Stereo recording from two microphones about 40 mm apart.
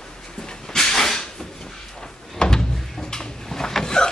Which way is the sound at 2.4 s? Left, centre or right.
Centre.